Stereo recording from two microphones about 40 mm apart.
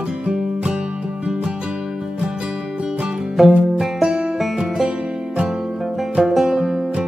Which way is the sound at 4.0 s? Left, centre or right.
Centre.